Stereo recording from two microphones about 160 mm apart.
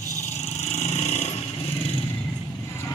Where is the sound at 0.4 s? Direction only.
45° left (ahead or behind).